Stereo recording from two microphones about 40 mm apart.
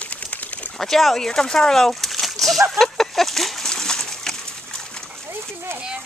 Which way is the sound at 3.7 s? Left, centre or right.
Centre.